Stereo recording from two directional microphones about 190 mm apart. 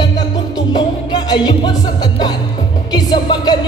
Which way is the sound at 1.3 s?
20° left (ahead or behind).